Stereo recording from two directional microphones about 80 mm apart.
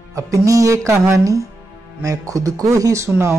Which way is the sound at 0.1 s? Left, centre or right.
Right.